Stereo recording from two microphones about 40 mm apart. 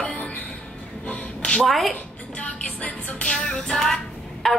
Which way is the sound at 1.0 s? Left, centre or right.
Left.